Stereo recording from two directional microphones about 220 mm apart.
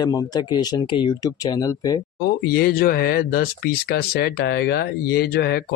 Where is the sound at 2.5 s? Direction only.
45° left (ahead or behind).